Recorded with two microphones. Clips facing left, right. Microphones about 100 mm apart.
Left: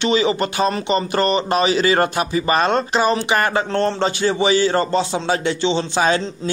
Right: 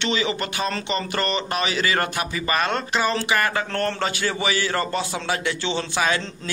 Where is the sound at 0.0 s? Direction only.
20° left (ahead or behind).